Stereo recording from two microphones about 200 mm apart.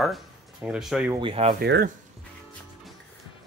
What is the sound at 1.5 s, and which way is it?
Speech, 55° right (ahead or behind).